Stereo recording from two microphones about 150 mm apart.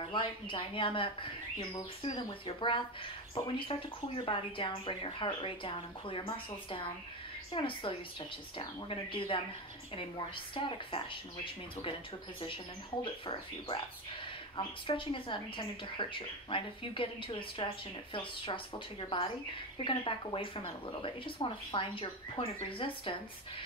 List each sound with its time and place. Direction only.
0.1 s speech: 35° left (ahead or behind)
2.4 s speech: 35° left (ahead or behind)
13.0 s speech: 35° left (ahead or behind)